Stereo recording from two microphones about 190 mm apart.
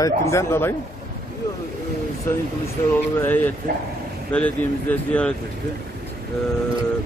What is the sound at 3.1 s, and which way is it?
Speech, 10° left (ahead or behind).